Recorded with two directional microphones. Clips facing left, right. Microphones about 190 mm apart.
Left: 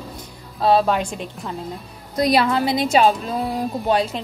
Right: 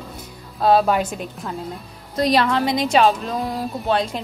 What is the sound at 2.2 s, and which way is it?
A woman's voice, 10° left (ahead or behind).